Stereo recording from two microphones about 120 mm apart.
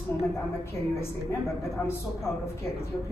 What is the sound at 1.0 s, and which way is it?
A woman's voice, 25° left (ahead or behind).